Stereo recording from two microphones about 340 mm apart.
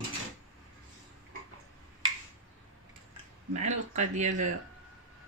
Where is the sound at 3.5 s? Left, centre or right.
Right.